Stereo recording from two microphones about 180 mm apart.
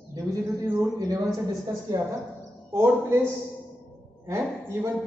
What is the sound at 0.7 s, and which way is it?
Speech, 20° right (ahead or behind).